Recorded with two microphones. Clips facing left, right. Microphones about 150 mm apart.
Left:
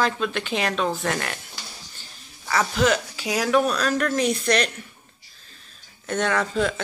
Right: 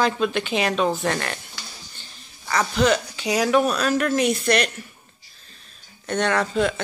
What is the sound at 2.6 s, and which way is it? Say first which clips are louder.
Speech: right 2 dB; centre (ahead or behind).